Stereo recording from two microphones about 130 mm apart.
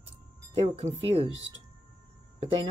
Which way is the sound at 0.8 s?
55° right (ahead or behind).